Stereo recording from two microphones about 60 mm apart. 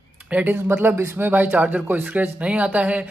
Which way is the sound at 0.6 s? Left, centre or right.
Right.